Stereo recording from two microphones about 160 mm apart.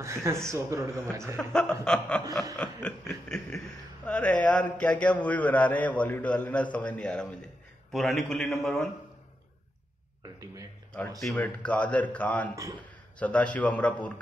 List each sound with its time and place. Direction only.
0.0 s a man's voice: 15° right (ahead or behind)
1.5 s chuckle: 5° left (ahead or behind)
2.5 s a man's voice: 5° left (ahead or behind)
7.9 s chuckle: centre (ahead or behind)
10.4 s speech: 20° right (ahead or behind)
10.9 s a man's voice: 5° left (ahead or behind)